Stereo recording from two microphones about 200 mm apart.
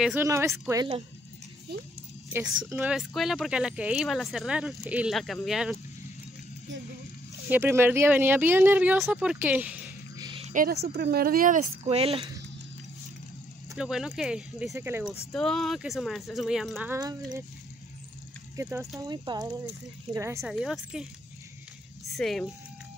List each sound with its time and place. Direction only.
0.0 s speech: 10° right (ahead or behind)
2.3 s speech: 5° right (ahead or behind)
7.4 s speech: 10° right (ahead or behind)
10.1 s a sound: 20° right (ahead or behind)
10.4 s speech: 40° right (ahead or behind)
13.7 s speech: 5° right (ahead or behind)
15.3 s speech: centre (ahead or behind); by 17.5 s 20° right (ahead or behind)
18.6 s speech: 15° right (ahead or behind)
20.4 s speech: 5° right (ahead or behind)
22.1 s speech: centre (ahead or behind)